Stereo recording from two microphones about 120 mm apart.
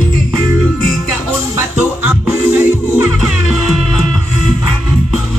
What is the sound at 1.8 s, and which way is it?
Music, 15° right (ahead or behind).